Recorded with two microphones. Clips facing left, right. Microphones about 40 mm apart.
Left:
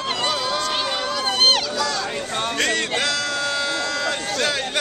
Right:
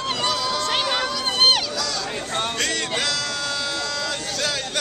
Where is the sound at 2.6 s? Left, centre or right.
Centre.